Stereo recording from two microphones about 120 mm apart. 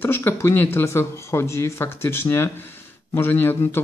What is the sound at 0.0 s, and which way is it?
Speech, 20° left (ahead or behind).